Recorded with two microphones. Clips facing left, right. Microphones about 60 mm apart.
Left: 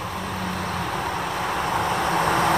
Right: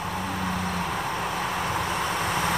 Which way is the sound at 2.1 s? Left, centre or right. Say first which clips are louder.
Left 6 dB; left.